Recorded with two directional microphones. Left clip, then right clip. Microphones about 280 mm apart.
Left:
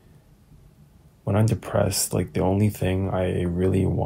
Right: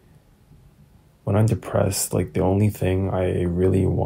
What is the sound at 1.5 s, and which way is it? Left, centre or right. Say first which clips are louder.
Speech: right 1 dB; centre.